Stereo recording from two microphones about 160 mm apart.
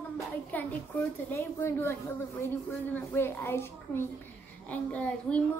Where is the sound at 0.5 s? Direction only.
10° left (ahead or behind).